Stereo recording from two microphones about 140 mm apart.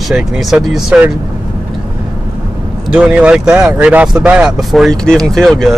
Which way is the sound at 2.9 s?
10° right (ahead or behind).